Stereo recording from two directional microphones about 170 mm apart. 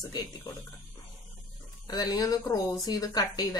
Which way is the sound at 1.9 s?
20° left (ahead or behind).